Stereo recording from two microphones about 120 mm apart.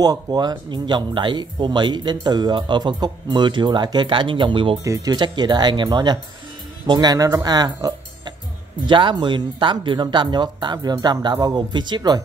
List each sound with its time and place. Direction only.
0.0 s speech: 35° right (ahead or behind)
4.8 s speech: 30° right (ahead or behind)